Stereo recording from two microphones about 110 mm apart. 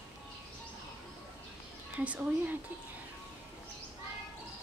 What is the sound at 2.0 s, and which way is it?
Speech, 15° right (ahead or behind).